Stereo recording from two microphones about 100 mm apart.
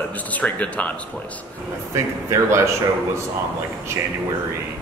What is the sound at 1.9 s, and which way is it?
Speech, 30° right (ahead or behind).